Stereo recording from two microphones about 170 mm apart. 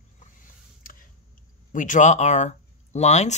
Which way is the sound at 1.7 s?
50° left (ahead or behind).